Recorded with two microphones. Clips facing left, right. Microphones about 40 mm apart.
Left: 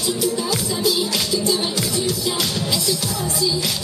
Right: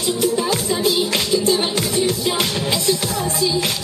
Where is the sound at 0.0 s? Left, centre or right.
Right.